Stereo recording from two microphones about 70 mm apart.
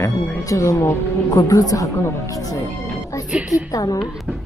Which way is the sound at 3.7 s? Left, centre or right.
Left.